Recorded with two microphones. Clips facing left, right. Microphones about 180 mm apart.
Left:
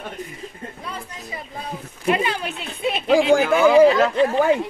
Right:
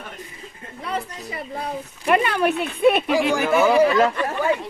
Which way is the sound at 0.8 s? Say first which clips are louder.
Right 9 dB; 65° right (ahead or behind).